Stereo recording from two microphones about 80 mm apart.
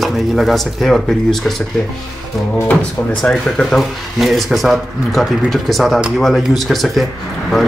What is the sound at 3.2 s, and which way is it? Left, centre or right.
Speech, centre.